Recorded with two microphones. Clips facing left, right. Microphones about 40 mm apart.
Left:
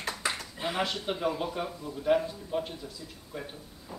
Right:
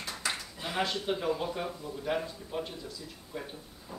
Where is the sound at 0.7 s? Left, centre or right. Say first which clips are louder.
Right 2 dB; centre.